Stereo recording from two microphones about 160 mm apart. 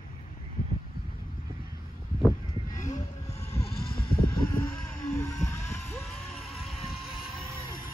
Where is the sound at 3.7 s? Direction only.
70° left (ahead or behind).